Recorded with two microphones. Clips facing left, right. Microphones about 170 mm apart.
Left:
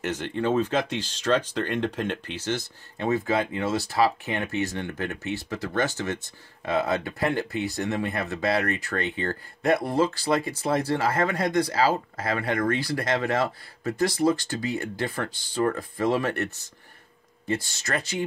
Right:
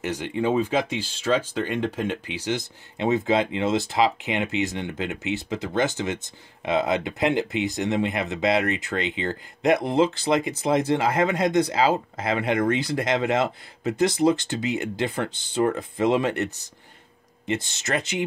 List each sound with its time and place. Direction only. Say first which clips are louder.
0.0 s speech: right 2 dB; 10° right (ahead or behind)